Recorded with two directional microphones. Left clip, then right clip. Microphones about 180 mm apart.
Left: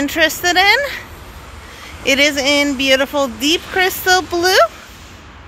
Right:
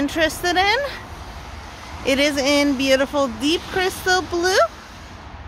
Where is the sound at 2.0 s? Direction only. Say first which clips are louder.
Left 5 dB; 5° left (ahead or behind).